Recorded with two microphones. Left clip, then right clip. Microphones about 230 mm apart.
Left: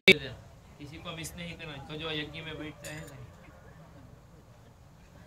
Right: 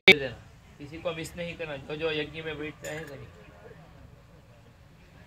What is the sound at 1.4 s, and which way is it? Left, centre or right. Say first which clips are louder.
Speech: right 7 dB; right.